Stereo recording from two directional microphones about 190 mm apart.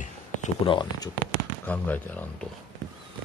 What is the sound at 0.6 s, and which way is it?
Speech, 25° left (ahead or behind).